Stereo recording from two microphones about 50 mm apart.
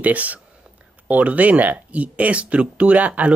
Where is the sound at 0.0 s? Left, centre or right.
Right.